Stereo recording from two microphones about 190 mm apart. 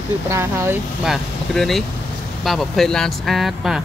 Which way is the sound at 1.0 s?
Centre (ahead or behind).